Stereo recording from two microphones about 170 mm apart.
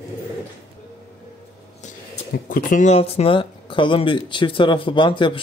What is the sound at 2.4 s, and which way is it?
Speech, 50° left (ahead or behind).